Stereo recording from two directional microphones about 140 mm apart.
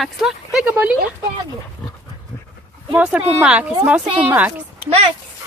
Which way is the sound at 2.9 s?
10° right (ahead or behind).